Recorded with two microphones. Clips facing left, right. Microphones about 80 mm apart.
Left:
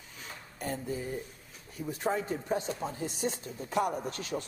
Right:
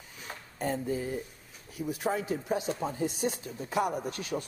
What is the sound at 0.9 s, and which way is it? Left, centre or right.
Speech, centre.